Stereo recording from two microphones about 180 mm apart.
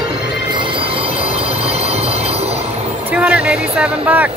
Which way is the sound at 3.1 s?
5° right (ahead or behind).